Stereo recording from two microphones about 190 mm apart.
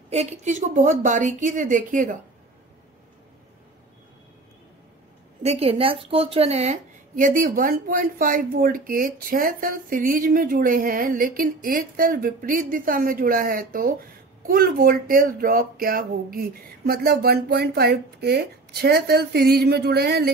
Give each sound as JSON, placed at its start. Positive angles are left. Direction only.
{"t": 0.1, "sound": "a woman's voice", "side_deg": -35}
{"t": 5.4, "sound": "a woman's voice", "side_deg": -35}